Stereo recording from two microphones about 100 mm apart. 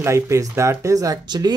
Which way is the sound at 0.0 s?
30° right (ahead or behind).